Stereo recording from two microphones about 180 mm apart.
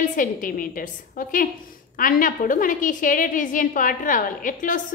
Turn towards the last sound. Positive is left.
turn(degrees=45)  # may be behind; listen again after turning